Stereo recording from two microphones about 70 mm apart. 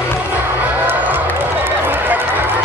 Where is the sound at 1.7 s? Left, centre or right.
Right.